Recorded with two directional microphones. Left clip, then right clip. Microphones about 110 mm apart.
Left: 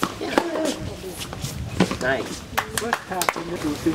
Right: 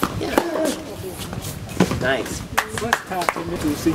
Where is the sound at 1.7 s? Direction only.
10° right (ahead or behind).